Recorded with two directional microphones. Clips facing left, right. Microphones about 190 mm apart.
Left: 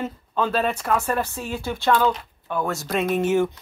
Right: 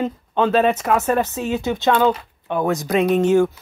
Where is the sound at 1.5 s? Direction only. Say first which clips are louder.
Right 2 dB; 20° right (ahead or behind).